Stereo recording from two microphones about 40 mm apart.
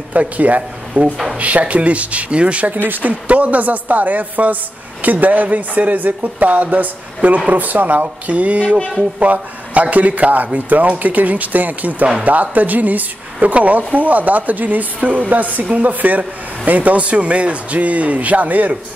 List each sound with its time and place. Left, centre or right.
0.1 s speech: right
2.9 s speech: right